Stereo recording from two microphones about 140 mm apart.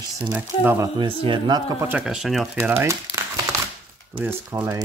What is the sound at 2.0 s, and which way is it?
Speech, 5° right (ahead or behind).